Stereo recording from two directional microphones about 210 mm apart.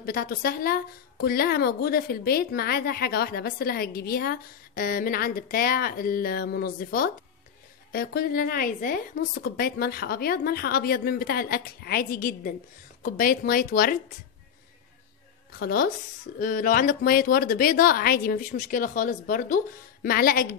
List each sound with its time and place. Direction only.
0.0 s a woman's voice: 45° left (ahead or behind)
15.6 s a woman's voice: 45° left (ahead or behind)